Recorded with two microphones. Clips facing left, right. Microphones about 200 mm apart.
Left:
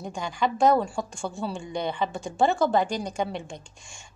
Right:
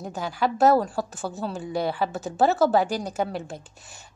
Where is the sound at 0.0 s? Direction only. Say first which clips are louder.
Right 1 dB; 5° right (ahead or behind).